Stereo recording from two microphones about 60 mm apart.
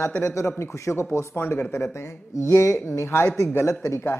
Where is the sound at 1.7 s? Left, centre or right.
Left.